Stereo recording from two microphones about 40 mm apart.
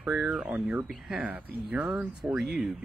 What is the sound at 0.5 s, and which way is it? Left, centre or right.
Speech, right.